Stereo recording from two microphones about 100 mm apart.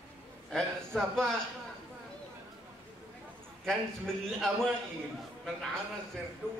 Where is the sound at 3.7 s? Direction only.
5° left (ahead or behind).